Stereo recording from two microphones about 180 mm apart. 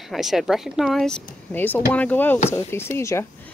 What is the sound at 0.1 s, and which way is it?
Speech, centre (ahead or behind).